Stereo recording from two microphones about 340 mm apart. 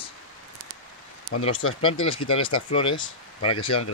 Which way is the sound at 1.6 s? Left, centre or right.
Left.